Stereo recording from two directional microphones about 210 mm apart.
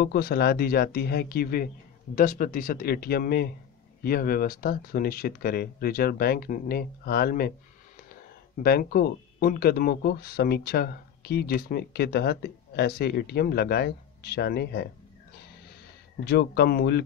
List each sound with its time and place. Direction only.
0.0 s speech: 50° left (ahead or behind)
8.6 s speech: 45° left (ahead or behind)
16.3 s speech: 50° left (ahead or behind)